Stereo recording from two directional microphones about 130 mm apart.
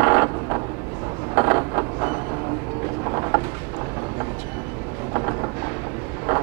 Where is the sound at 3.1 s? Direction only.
30° right (ahead or behind).